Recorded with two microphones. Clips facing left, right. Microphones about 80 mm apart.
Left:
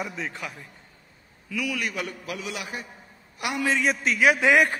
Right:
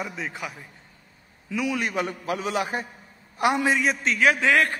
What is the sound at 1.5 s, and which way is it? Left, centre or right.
A man's voice, right.